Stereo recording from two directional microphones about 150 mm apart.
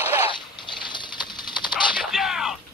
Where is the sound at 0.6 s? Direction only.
30° left (ahead or behind).